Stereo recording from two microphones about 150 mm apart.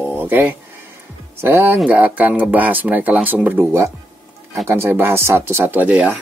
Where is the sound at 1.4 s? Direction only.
15° right (ahead or behind).